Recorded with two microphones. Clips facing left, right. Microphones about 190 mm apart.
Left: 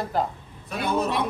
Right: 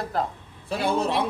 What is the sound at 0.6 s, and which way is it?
Speech, 30° right (ahead or behind).